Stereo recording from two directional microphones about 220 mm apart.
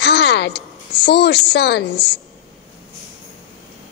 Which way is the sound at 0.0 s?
50° left (ahead or behind).